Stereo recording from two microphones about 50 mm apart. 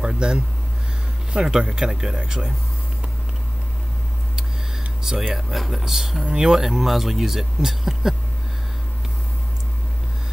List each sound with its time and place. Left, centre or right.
0.0 s speech: centre
5.0 s speech: centre
5.5 s speech: centre